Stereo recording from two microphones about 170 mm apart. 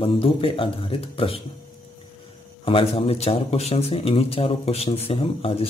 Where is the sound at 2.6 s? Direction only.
30° left (ahead or behind).